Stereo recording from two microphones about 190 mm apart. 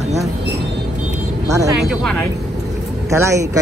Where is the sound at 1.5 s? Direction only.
15° right (ahead or behind).